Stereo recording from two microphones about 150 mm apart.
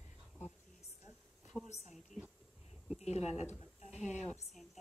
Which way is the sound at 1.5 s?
5° right (ahead or behind).